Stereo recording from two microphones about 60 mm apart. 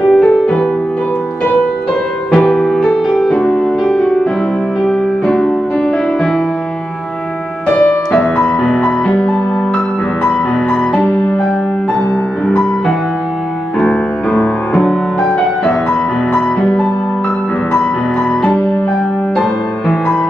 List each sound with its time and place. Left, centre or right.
0.1 s music: centre
2.3 s music: centre
7.7 s music: left
12.4 s music: centre
14.7 s music: centre
16.3 s music: centre